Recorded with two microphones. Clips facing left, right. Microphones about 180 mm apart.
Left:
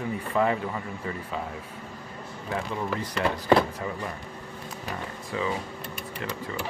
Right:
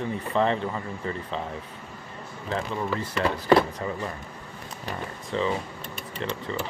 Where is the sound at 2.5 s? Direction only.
15° left (ahead or behind).